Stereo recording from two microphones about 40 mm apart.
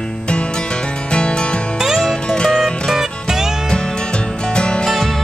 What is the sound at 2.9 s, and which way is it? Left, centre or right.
Music, centre.